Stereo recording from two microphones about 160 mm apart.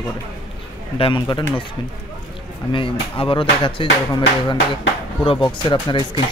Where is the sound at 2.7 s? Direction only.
35° left (ahead or behind).